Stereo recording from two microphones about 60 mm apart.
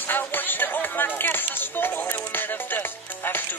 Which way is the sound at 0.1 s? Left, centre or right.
Left.